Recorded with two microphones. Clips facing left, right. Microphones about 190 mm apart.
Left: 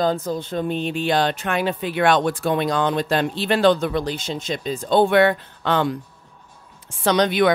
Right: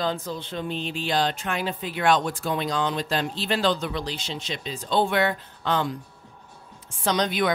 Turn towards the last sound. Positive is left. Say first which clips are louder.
# left 6 dB
turn(degrees=70)  # may be behind; listen again after turning